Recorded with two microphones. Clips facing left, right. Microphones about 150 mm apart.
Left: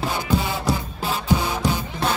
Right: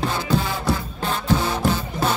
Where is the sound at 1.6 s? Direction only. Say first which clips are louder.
Right 2 dB; centre (ahead or behind).